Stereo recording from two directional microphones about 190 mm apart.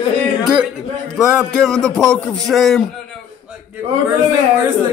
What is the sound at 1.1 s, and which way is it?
Speech, centre (ahead or behind).